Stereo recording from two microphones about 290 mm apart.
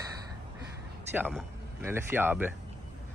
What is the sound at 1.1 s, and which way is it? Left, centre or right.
Speech, centre.